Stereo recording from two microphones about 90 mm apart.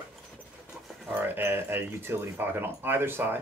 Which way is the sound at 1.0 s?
20° right (ahead or behind).